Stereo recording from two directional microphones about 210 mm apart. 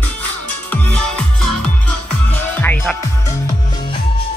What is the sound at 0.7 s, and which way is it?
Music, 5° left (ahead or behind).